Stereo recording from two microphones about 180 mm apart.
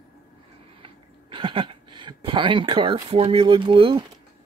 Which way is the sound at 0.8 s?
30° right (ahead or behind).